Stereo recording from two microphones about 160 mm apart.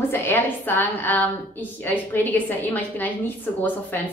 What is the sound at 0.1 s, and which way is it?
A woman's voice, 15° left (ahead or behind).